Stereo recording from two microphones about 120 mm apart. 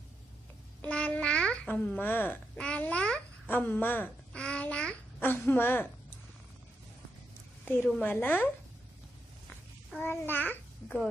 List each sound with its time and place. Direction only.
0.8 s babbling: 10° left (ahead or behind)
7.6 s a woman's voice: 15° left (ahead or behind)
9.9 s a child's voice: 15° left (ahead or behind)